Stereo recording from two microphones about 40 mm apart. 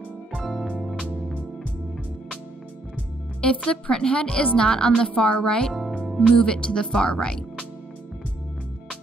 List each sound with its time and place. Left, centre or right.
0.5 s music: centre
3.3 s speech: left